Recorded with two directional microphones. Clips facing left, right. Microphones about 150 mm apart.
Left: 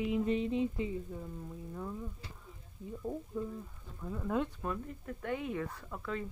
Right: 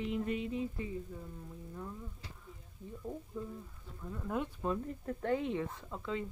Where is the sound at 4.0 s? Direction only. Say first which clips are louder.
Left 4 dB; 5° left (ahead or behind).